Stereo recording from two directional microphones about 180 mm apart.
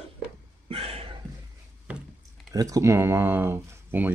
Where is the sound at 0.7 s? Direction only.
35° right (ahead or behind).